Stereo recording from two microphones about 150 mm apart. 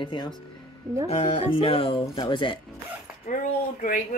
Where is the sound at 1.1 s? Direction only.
40° left (ahead or behind).